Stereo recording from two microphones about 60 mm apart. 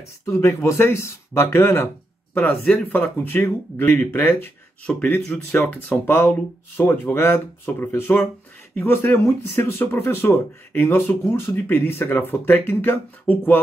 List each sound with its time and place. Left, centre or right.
0.2 s speech: left
2.3 s speech: left
4.8 s speech: left
6.0 s speech: left
13.2 s speech: left